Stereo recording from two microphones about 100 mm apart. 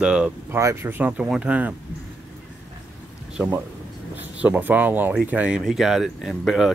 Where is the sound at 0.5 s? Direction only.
25° right (ahead or behind).